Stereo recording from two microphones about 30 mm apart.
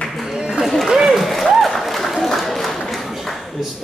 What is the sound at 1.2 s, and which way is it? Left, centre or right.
Applause, centre.